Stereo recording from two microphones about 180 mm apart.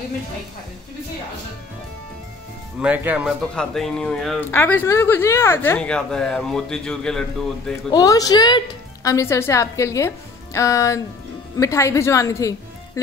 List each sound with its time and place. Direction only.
2.8 s speech: 10° right (ahead or behind)
3.5 s a woman's voice: 5° left (ahead or behind)
7.9 s a woman's voice: 20° left (ahead or behind)